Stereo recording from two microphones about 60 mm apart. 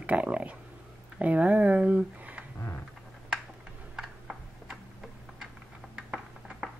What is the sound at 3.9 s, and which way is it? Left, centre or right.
Tick-tock, centre.